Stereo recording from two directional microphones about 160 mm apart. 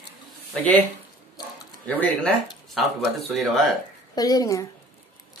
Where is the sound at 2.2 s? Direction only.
Centre (ahead or behind).